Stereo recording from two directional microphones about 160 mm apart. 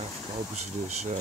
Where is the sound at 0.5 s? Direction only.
45° right (ahead or behind).